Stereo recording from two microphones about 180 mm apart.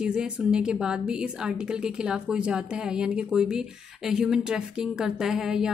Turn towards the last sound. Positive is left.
turn(degrees=-5)  # may be behind; listen again after turning